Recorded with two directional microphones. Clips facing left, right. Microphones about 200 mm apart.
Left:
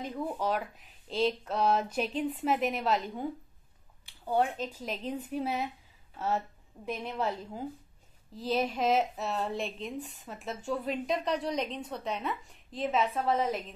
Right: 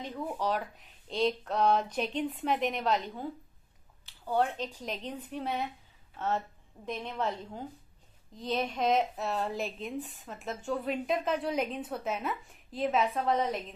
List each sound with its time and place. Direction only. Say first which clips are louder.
0.0 s speech: left 1 dB; 10° left (ahead or behind)
4.0 s a sound: left 1 dB; 10° left (ahead or behind)
4.7 s a woman's voice: left 2 dB; 5° left (ahead or behind)